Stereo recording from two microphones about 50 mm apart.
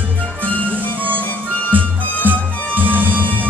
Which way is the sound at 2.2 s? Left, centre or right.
Right.